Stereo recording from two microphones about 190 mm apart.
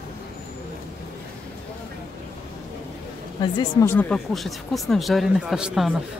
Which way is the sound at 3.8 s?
10° left (ahead or behind).